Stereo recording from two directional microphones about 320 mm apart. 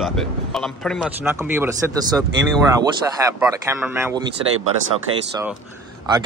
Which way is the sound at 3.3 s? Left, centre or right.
Centre.